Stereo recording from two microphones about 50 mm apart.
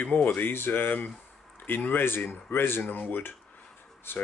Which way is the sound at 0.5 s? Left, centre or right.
Left.